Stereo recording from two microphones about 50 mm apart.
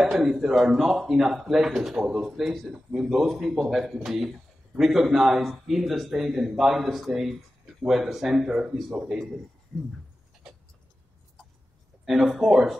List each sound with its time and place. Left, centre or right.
0.1 s speech: centre
9.7 s a sound: centre
12.0 s speech: centre